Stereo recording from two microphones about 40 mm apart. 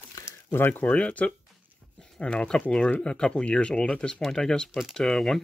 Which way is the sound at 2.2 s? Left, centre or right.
Left.